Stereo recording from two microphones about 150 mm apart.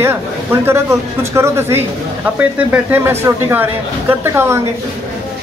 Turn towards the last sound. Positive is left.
turn(degrees=-15)  # may be behind; listen again after turning